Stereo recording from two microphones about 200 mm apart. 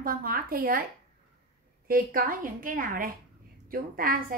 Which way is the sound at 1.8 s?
45° right (ahead or behind).